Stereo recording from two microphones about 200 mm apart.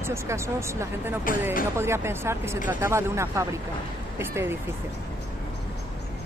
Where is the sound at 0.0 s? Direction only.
15° right (ahead or behind).